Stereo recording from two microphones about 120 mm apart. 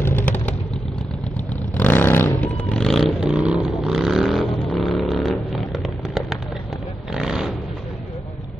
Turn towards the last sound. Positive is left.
turn(degrees=-5)  # may be behind; listen again after turning